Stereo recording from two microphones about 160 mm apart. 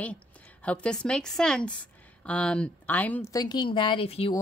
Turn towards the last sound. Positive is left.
turn(degrees=35)  # may be behind; listen again after turning